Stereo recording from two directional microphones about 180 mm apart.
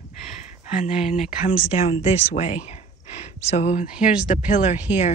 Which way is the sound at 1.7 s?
35° left (ahead or behind).